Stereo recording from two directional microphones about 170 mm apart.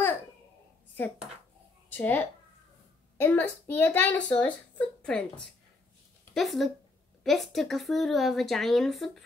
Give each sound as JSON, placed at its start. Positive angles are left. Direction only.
{"t": 1.9, "sound": "a child's voice", "side_deg": 10}
{"t": 6.3, "sound": "a woman's voice", "side_deg": 0}